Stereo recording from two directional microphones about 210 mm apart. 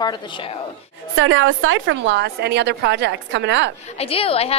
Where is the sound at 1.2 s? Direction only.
70° right (ahead or behind).